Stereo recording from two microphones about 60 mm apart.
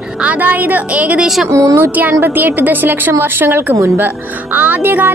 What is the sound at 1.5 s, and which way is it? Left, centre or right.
Speech, right.